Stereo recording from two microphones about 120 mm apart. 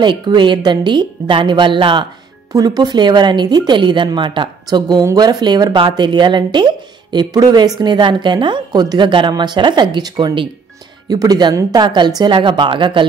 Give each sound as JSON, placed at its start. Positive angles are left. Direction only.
{"t": 0.0, "sound": "speech", "side_deg": -40}
{"t": 2.5, "sound": "speech", "side_deg": -30}